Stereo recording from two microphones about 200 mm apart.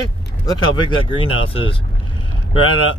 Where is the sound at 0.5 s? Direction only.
20° left (ahead or behind).